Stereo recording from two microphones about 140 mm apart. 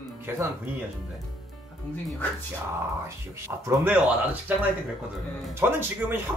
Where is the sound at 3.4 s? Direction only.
15° right (ahead or behind).